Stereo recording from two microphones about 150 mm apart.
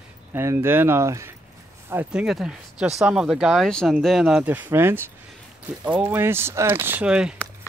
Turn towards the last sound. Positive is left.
turn(degrees=-5)  # may be behind; listen again after turning